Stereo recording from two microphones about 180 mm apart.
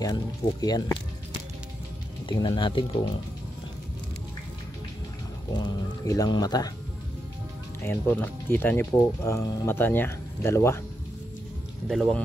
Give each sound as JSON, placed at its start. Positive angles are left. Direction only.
{"t": 0.0, "sound": "speech", "side_deg": 20}
{"t": 2.2, "sound": "speech", "side_deg": 25}
{"t": 5.5, "sound": "speech", "side_deg": 25}
{"t": 7.8, "sound": "speech", "side_deg": 10}
{"t": 11.9, "sound": "speech", "side_deg": 0}